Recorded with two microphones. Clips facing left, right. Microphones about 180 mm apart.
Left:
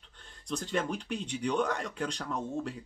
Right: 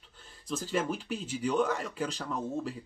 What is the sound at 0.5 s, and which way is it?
Speech, 5° right (ahead or behind).